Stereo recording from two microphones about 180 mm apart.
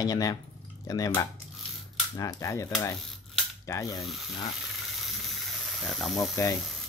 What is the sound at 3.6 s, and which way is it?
Speech, 20° left (ahead or behind).